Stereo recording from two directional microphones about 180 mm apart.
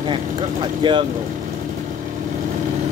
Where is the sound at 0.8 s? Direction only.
25° right (ahead or behind).